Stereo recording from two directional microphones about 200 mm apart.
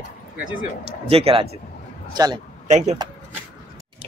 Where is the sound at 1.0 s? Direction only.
30° right (ahead or behind).